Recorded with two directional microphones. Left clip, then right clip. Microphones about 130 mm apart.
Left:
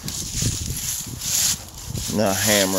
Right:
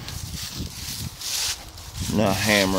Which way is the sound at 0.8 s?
90° left.